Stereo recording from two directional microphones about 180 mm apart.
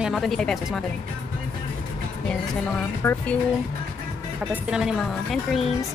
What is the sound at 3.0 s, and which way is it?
Speech, 10° left (ahead or behind).